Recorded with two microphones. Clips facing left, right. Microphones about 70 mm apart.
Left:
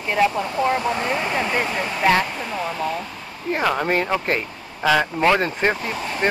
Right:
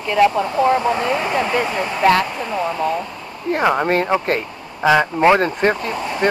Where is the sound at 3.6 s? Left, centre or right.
Centre.